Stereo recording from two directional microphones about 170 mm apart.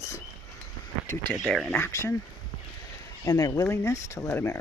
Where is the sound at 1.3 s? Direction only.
Centre (ahead or behind).